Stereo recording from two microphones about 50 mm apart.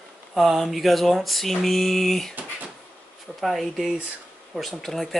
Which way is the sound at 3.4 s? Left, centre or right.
Centre.